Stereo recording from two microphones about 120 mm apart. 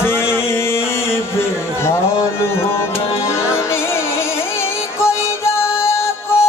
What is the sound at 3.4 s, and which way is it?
Music, 20° left (ahead or behind).